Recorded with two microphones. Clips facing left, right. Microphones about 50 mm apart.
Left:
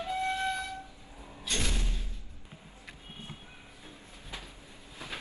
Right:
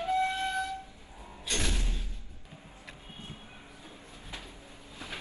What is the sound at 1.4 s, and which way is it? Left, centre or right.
Thump, right.